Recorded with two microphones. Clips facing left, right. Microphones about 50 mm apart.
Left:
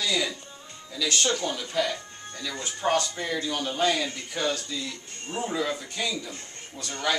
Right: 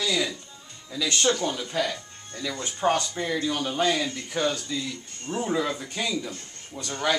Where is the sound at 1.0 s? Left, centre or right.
Right.